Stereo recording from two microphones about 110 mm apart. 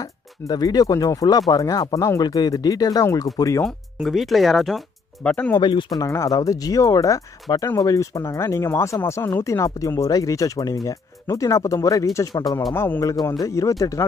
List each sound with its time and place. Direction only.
0.5 s speech: 35° left (ahead or behind)
3.6 s speech: centre (ahead or behind)
5.3 s speech: 15° left (ahead or behind)
5.6 s speech: 45° left (ahead or behind)
5.9 s speech: 30° left (ahead or behind)
12.7 s speech: 20° left (ahead or behind)
13.1 s speech: 40° left (ahead or behind)